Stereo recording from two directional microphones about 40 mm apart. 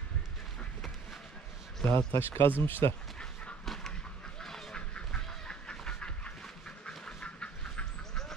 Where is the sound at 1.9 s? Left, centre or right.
Left.